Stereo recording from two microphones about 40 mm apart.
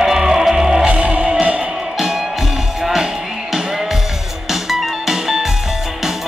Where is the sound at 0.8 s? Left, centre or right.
Right.